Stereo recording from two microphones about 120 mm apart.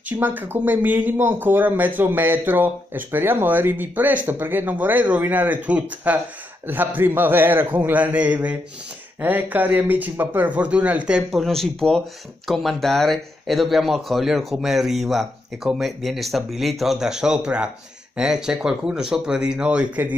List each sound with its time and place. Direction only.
0.1 s speech: 15° right (ahead or behind)